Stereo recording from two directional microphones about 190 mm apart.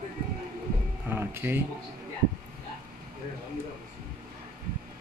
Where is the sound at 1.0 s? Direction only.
10° right (ahead or behind).